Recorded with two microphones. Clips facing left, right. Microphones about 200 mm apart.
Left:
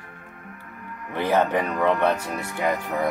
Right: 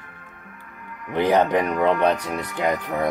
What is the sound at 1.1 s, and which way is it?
Speech, 15° right (ahead or behind).